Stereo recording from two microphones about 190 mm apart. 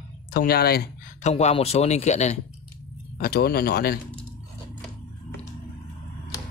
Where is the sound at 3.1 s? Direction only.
50° left (ahead or behind).